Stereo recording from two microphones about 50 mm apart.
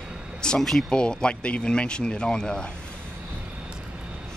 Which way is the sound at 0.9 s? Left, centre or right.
Centre.